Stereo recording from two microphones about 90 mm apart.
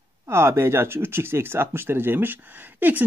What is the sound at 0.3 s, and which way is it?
Speech, 30° right (ahead or behind).